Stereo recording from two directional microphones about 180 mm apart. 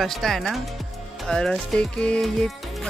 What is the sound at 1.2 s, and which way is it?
Music, centre (ahead or behind).